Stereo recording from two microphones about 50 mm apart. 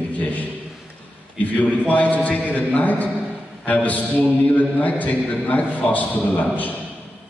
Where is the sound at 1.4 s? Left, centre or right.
Left.